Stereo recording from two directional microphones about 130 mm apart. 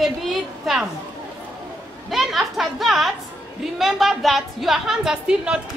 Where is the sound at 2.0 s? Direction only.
Centre (ahead or behind).